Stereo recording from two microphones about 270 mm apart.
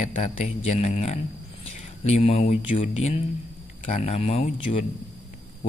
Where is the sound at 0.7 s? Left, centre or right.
Left.